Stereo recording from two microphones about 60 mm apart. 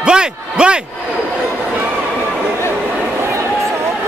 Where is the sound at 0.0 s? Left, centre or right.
Centre.